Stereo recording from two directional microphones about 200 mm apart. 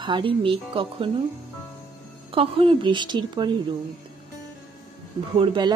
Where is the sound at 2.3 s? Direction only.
25° right (ahead or behind).